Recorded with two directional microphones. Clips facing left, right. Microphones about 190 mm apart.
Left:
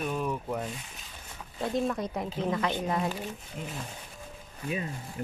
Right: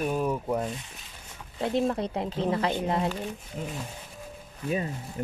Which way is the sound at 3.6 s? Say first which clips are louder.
Right 4 dB; 40° right (ahead or behind).